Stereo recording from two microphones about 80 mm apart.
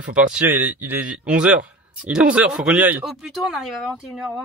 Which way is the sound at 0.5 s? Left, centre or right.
Right.